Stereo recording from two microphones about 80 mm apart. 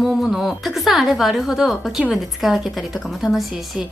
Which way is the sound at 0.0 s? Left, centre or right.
Centre.